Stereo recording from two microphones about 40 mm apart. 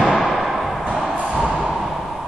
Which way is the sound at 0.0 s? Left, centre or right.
Centre.